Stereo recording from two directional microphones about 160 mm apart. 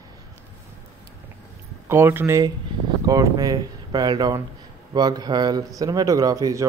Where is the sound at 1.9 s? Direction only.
15° right (ahead or behind).